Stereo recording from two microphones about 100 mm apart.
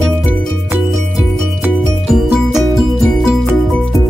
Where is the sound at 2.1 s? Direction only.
5° right (ahead or behind).